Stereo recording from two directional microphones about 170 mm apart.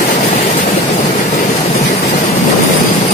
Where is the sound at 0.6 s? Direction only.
40° left (ahead or behind).